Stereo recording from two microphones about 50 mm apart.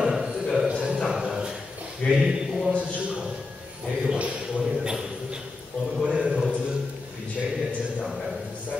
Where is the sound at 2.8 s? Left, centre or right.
Right.